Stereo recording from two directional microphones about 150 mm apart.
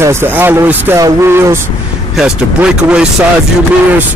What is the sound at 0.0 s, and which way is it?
A man's voice, 15° right (ahead or behind).